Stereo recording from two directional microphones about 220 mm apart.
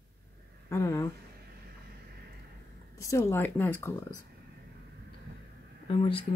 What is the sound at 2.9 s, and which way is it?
Speech, 15° left (ahead or behind).